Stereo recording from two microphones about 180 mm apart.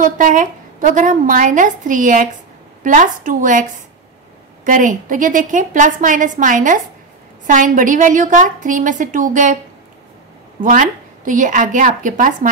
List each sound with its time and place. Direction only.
0.0 s a woman's voice: 45° right (ahead or behind)
4.6 s a woman's voice: 45° right (ahead or behind)
10.6 s a woman's voice: 45° right (ahead or behind)